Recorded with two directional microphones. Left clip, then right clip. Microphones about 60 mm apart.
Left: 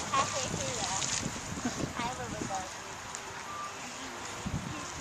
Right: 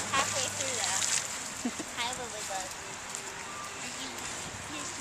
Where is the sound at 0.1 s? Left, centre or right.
Centre.